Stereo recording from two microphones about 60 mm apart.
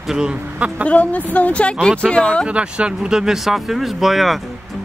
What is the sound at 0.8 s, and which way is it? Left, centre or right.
Speech, left.